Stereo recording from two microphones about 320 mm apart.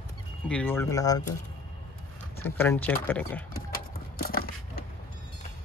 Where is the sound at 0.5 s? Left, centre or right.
Centre.